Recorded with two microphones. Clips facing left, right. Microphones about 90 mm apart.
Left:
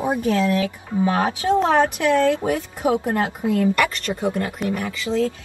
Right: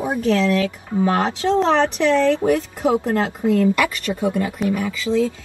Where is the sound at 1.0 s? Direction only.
15° left (ahead or behind).